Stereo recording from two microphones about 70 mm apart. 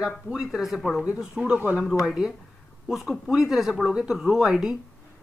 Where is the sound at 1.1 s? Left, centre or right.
Centre.